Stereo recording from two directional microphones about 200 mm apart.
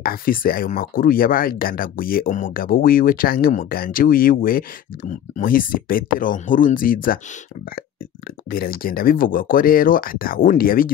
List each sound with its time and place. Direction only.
0.0 s speech: 45° left (ahead or behind)
8.5 s speech: 45° left (ahead or behind)